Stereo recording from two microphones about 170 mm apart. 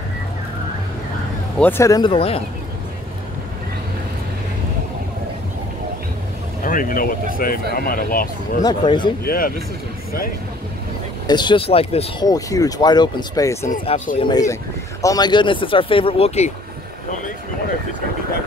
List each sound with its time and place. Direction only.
1.6 s speech: 15° left (ahead or behind); by 2.4 s 35° left (ahead or behind)
6.6 s speech: 55° left (ahead or behind)
8.6 s speech: 25° left (ahead or behind)
9.2 s speech: 60° left (ahead or behind)
11.2 s speech: 25° left (ahead or behind)
12.3 s speech: 20° left (ahead or behind)
14.1 s speech: 30° left (ahead or behind)